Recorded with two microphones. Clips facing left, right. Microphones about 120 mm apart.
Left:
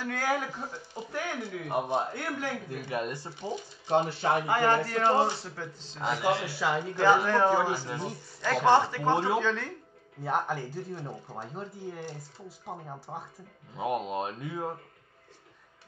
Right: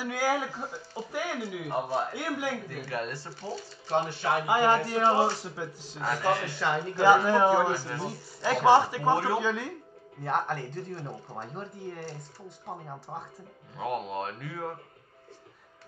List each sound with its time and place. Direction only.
0.0 s a man's voice: 5° right (ahead or behind)
1.7 s speech: 15° left (ahead or behind)
2.1 s a man's voice: 10° right (ahead or behind)
2.7 s speech: 15° left (ahead or behind)
4.5 s a man's voice: 15° right (ahead or behind)
5.9 s speech: 15° left (ahead or behind)
7.2 s a man's voice: 10° right (ahead or behind)
7.7 s speech: 15° left (ahead or behind)
8.6 s a man's voice: 10° right (ahead or behind)
10.2 s speech: 5° left (ahead or behind)
13.7 s speech: 20° left (ahead or behind)